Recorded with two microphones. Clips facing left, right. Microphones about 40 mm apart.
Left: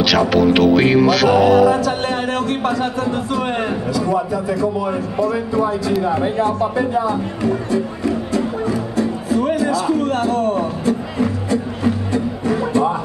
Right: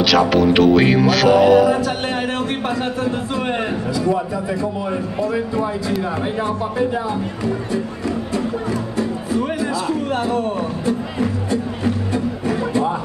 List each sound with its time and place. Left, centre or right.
0.3 s music: centre
2.8 s a man's voice: centre
5.6 s music: centre
9.3 s music: centre
10.0 s speech: right